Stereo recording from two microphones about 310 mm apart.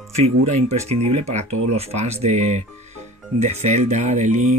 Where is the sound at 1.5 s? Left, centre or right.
Right.